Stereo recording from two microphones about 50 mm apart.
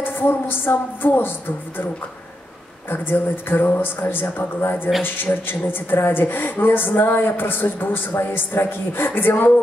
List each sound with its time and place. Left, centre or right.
0.0 s a woman's voice: left
2.9 s a woman's voice: left